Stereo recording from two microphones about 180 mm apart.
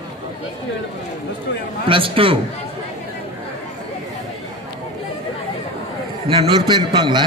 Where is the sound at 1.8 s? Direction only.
30° right (ahead or behind).